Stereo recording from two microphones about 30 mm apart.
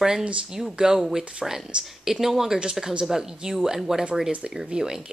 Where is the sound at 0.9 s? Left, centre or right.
Centre.